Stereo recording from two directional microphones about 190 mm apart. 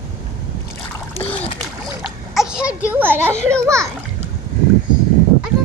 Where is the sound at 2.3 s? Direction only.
5° right (ahead or behind).